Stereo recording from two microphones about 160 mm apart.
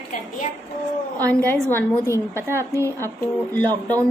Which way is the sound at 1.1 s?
10° left (ahead or behind).